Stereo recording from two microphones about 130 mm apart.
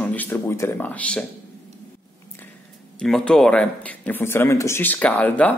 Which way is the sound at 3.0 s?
5° left (ahead or behind).